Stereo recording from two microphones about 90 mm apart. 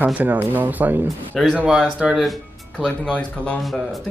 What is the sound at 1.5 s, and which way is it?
Speech, 10° right (ahead or behind).